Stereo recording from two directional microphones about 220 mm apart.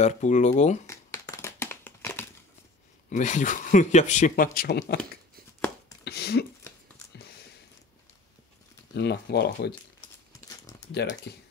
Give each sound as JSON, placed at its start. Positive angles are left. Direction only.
{"t": 0.0, "sound": "speech", "side_deg": 30}
{"t": 0.8, "sound": "a sound", "side_deg": 15}
{"t": 3.1, "sound": "speech", "side_deg": 35}
{"t": 6.0, "sound": "a sound", "side_deg": 45}
{"t": 8.9, "sound": "speech", "side_deg": 50}
{"t": 10.9, "sound": "speech", "side_deg": 45}